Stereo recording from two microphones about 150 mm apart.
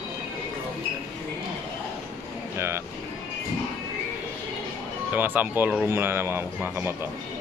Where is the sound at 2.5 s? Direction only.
15° right (ahead or behind).